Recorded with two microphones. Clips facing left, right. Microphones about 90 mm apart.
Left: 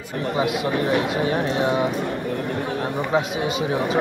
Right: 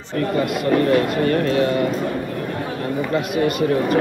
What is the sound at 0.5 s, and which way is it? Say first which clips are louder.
Speech: right 4 dB; 60° right (ahead or behind).